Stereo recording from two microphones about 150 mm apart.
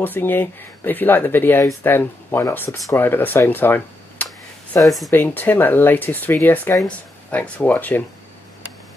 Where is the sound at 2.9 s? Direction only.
15° left (ahead or behind).